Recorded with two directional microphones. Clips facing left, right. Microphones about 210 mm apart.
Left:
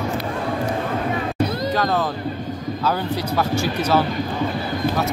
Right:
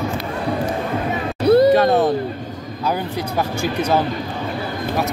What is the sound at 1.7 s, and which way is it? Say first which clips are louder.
Music: right 7 dB; 25° right (ahead or behind).